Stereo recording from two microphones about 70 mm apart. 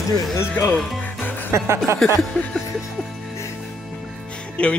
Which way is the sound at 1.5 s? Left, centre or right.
Right.